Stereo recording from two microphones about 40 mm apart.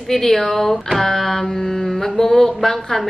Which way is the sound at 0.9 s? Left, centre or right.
Centre.